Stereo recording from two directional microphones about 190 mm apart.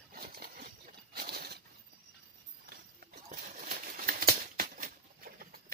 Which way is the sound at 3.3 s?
45° right (ahead or behind).